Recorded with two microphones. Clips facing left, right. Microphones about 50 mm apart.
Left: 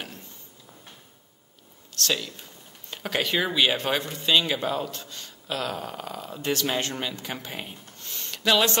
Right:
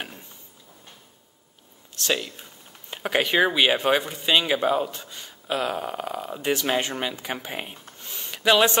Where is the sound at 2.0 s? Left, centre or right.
Centre.